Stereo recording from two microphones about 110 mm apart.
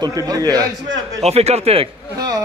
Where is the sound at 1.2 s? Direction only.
80° right.